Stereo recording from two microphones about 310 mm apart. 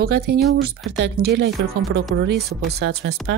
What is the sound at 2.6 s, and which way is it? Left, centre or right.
Speech, right.